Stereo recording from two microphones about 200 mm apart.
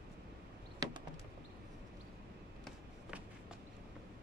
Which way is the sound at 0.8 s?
20° right (ahead or behind).